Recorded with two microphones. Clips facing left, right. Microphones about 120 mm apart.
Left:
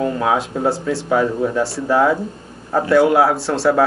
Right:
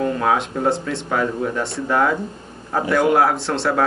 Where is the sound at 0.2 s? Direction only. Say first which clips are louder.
Left 1 dB; 5° left (ahead or behind).